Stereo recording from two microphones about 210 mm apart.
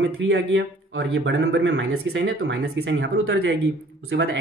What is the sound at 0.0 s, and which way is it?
Speech, 70° right (ahead or behind).